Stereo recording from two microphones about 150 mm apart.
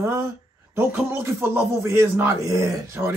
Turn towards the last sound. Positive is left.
turn(degrees=-20)  # may be behind; listen again after turning